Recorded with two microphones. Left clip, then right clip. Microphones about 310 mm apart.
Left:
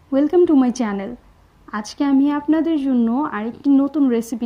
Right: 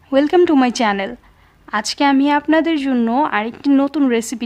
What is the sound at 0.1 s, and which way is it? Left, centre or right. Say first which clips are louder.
A woman's voice: right 2 dB; centre.